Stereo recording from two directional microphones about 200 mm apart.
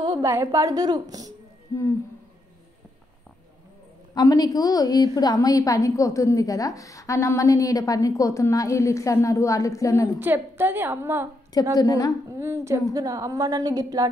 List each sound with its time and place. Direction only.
0.0 s a woman's voice: 15° right (ahead or behind)
1.7 s a woman's voice: 15° left (ahead or behind)
4.1 s a woman's voice: 20° left (ahead or behind)
10.1 s a woman's voice: 10° right (ahead or behind)
11.7 s a woman's voice: 15° left (ahead or behind)
12.3 s a woman's voice: 15° right (ahead or behind)